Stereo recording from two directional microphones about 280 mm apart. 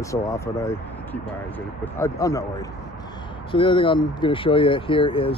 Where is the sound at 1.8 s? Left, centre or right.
Centre.